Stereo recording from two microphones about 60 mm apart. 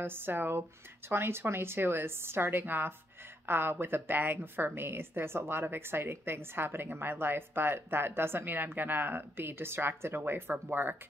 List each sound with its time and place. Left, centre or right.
0.0 s a woman's voice: right